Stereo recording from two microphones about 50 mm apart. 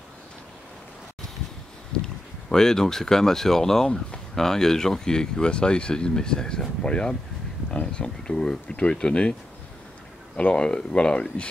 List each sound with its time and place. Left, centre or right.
1.9 s a sound: centre
2.5 s speech: centre
10.3 s speech: left